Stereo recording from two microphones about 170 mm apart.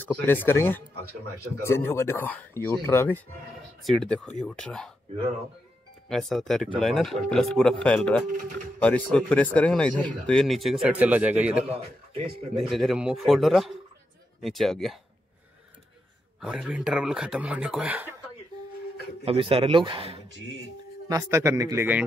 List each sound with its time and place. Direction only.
0.0 s speech: 10° left (ahead or behind)
3.8 s speech: centre (ahead or behind)
6.0 s speech: centre (ahead or behind)
11.7 s speech: 35° right (ahead or behind)
12.5 s speech: centre (ahead or behind)
16.3 s speech: 5° right (ahead or behind)
19.2 s speech: 35° right (ahead or behind)
21.1 s a man's voice: 20° right (ahead or behind)